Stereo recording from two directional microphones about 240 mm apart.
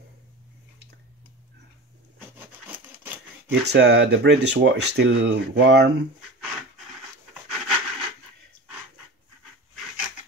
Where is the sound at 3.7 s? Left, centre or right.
Right.